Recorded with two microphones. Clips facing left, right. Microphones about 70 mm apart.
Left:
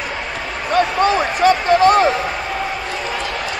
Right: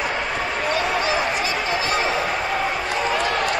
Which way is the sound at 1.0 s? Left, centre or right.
Left.